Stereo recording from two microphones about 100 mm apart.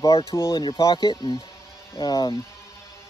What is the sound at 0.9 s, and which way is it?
Speech, 50° left (ahead or behind).